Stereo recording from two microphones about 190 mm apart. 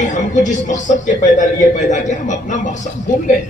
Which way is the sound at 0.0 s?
40° left (ahead or behind).